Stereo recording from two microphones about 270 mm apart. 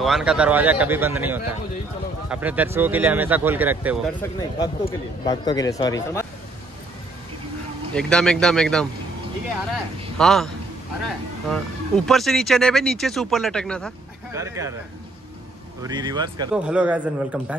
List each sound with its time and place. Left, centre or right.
0.0 s speech: centre
4.6 s a man's voice: centre
7.9 s speech: centre
10.1 s speech: centre
11.5 s speech: centre
14.3 s speech: centre
15.8 s speech: centre
16.5 s speech: centre